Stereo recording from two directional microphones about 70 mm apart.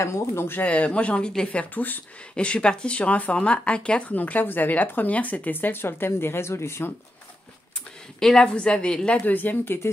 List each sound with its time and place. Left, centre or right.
0.0 s speech: left
0.6 s speech: centre; by 6.9 s left
8.2 s a woman's voice: centre
9.3 s speech: left